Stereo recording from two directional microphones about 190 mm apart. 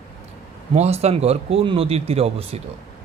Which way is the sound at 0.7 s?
35° right (ahead or behind).